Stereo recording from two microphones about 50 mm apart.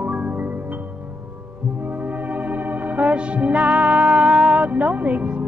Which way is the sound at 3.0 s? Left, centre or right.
Right.